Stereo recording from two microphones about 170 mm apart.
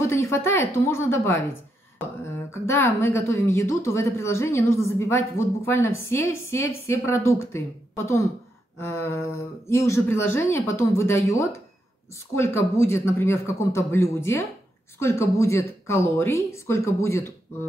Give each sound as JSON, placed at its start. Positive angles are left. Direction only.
{"t": 0.0, "sound": "a woman's voice", "side_deg": 15}
{"t": 2.5, "sound": "a woman's voice", "side_deg": 15}